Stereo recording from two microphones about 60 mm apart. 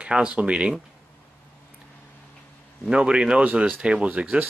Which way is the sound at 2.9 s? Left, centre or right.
Centre.